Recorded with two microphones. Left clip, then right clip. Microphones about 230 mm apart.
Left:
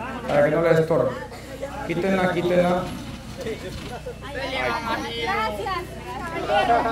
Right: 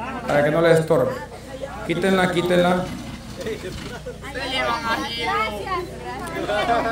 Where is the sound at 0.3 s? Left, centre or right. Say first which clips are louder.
Right 2 dB; centre.